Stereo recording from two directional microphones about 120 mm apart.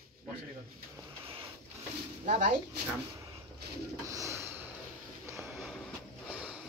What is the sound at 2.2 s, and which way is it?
Speech, 90° right.